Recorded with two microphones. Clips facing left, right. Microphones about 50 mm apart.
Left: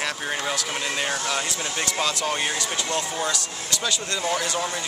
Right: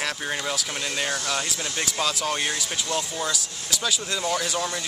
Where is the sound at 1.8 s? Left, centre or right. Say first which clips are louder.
Left 1 dB; centre.